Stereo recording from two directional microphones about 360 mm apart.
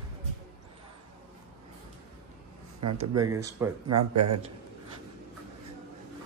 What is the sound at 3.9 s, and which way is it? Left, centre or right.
Speech, right.